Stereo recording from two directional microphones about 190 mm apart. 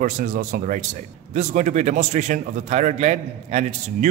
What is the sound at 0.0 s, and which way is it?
A man's voice, 45° right (ahead or behind).